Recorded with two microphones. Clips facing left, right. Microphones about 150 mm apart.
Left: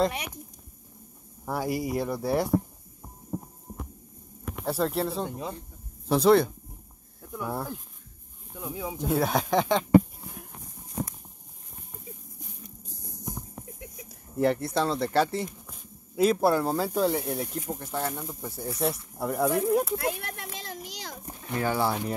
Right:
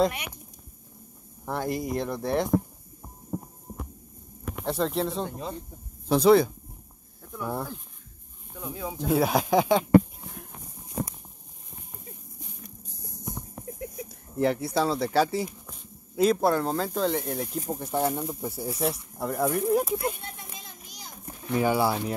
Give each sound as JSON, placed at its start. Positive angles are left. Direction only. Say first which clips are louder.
{"t": 1.4, "sound": "speech", "louder": "even", "side_deg": 5}
{"t": 4.6, "sound": "speech", "louder": "even", "side_deg": 5}
{"t": 9.8, "sound": "a sound", "louder": "right 1 dB", "side_deg": 0}
{"t": 14.3, "sound": "speech", "louder": "even", "side_deg": 0}
{"t": 17.6, "sound": "speech", "louder": "right 5 dB", "side_deg": -15}
{"t": 20.2, "sound": "a sound", "louder": "left 4 dB", "side_deg": 80}
{"t": 21.5, "sound": "speech", "louder": "right 3 dB", "side_deg": -10}